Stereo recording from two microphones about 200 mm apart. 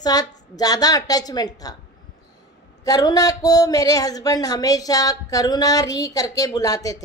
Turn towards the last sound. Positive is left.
turn(degrees=15)  # may be behind; listen again after turning